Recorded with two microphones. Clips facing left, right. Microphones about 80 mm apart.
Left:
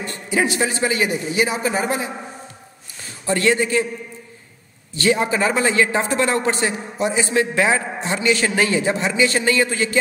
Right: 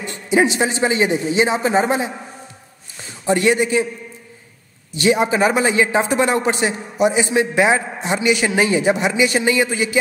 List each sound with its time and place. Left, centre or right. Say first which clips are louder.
0.0 s a man's voice: right 4 dB; right
3.3 s a man's voice: right 2 dB; centre
4.9 s a man's voice: right 2 dB; centre